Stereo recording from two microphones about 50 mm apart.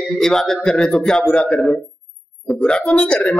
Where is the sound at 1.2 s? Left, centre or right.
Left.